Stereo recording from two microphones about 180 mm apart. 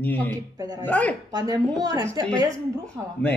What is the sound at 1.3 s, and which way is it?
Speech, 20° right (ahead or behind).